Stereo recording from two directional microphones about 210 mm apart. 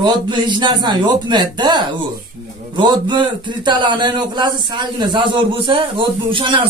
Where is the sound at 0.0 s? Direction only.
20° right (ahead or behind).